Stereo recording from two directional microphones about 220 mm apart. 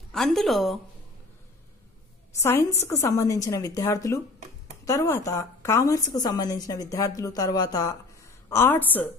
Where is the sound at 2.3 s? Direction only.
10° left (ahead or behind).